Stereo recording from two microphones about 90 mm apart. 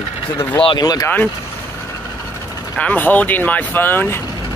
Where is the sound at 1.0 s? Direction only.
20° left (ahead or behind).